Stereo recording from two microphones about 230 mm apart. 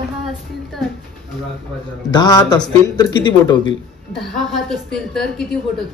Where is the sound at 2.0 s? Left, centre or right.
Centre.